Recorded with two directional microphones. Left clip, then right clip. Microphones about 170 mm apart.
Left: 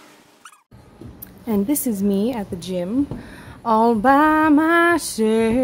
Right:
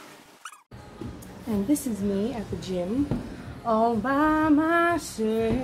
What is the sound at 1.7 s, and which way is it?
Female singing, 60° left (ahead or behind).